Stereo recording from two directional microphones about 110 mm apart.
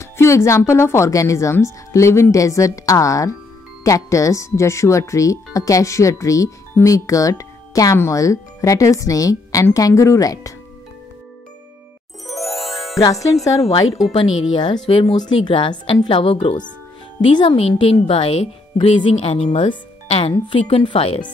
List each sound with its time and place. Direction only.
0.0 s speech: 25° left (ahead or behind)
12.3 s music: centre (ahead or behind)
13.2 s speech: 30° left (ahead or behind)
14.0 s a woman's voice: 50° left (ahead or behind)
19.1 s speech: 65° left (ahead or behind)
20.4 s a woman's voice: 50° left (ahead or behind)